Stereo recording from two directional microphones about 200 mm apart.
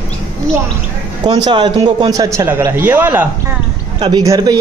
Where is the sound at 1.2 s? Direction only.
20° right (ahead or behind).